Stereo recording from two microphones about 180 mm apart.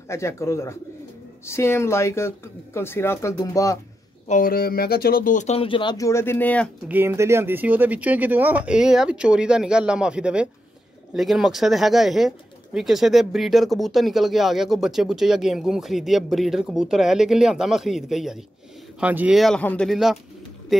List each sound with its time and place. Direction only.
0.1 s speech: 15° left (ahead or behind)
4.3 s speech: 50° left (ahead or behind); by 6.7 s 10° left (ahead or behind)
6.9 s speech: 15° right (ahead or behind)